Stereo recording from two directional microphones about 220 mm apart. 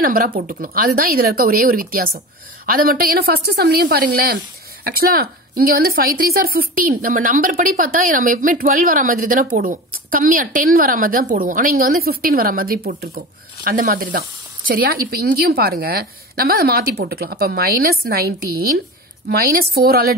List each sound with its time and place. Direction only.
0.0 s a woman's voice: 40° right (ahead or behind)